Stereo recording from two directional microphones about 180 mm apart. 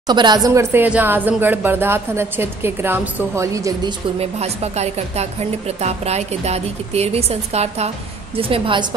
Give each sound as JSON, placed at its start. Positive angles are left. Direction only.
{"t": 0.0, "sound": "speech", "side_deg": -25}
{"t": 4.2, "sound": "a woman's voice", "side_deg": -35}